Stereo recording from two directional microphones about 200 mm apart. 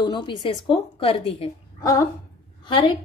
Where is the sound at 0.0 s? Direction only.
25° left (ahead or behind).